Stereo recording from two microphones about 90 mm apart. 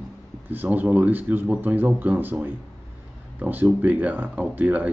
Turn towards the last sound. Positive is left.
turn(degrees=-20)  # may be behind; listen again after turning